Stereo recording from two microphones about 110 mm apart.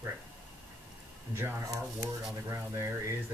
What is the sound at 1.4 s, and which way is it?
Speech, 25° right (ahead or behind).